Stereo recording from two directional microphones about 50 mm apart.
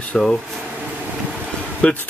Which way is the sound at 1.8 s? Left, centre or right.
Left.